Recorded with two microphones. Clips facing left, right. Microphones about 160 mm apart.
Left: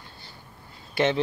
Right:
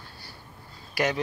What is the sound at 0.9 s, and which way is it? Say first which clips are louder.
Speech: left 4 dB; 25° left (ahead or behind).